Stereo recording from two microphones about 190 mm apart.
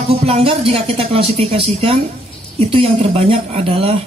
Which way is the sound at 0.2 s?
30° right (ahead or behind).